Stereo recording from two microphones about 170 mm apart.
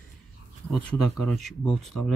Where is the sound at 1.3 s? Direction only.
Centre (ahead or behind).